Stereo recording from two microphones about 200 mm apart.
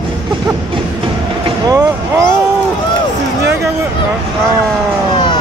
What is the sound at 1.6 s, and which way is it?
Speech, 20° right (ahead or behind).